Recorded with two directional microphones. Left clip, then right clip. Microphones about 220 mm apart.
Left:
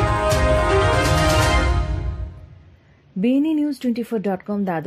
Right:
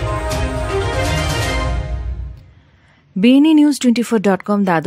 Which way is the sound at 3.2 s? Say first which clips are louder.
Right 9 dB; 20° right (ahead or behind).